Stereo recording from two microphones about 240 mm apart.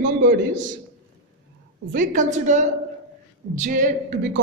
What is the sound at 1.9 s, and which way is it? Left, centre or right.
Speech, right.